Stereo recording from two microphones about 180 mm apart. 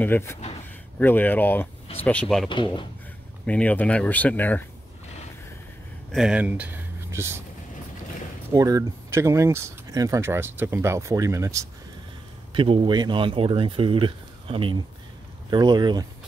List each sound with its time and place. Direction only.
0.0 s speech: 10° left (ahead or behind)
2.5 s speech: 25° left (ahead or behind)
3.4 s speech: 10° left (ahead or behind)
6.1 s speech: 5° right (ahead or behind)
8.5 s speech: 20° right (ahead or behind)
12.5 s speech: 30° right (ahead or behind)